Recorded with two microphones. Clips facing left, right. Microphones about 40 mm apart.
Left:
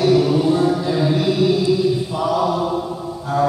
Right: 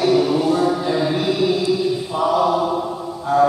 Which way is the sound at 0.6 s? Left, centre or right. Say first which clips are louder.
Left 1 dB; centre.